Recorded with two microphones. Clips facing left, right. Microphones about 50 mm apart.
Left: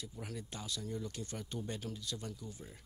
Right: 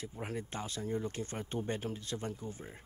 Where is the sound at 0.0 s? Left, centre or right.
Right.